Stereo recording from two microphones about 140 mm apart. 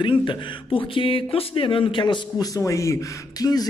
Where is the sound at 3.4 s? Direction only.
25° left (ahead or behind).